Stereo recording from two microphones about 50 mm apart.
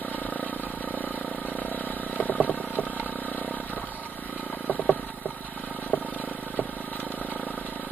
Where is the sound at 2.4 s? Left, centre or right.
Left.